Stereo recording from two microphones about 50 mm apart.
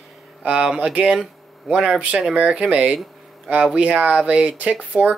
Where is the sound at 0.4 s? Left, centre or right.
Right.